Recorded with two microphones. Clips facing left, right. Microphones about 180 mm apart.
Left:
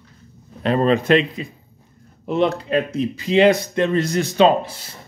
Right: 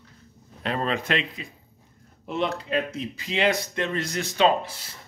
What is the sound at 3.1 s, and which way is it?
Speech, 35° left (ahead or behind).